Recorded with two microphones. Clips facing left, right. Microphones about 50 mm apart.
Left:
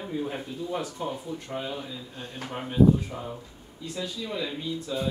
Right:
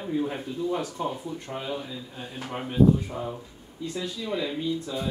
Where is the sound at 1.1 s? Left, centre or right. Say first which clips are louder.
Right 1 dB; centre.